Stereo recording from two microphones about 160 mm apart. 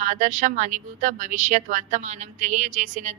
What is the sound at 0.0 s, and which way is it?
A woman's voice, 50° right (ahead or behind).